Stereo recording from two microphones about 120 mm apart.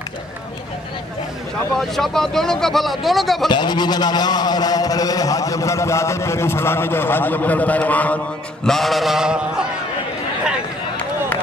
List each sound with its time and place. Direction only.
1.8 s speech: 5° left (ahead or behind)
3.4 s a man's voice: 35° left (ahead or behind); by 8.2 s 15° left (ahead or behind)
8.6 s speech: centre (ahead or behind)